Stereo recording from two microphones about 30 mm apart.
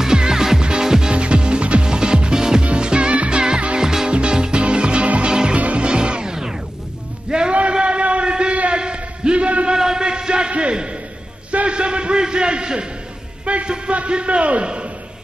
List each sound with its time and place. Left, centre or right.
0.0 s music: right
1.1 s music: right
2.6 s music: right
3.7 s music: centre
4.1 s music: right
7.2 s a sound: right
9.9 s music: right
10.5 s a sound: right
13.9 s a man's voice: right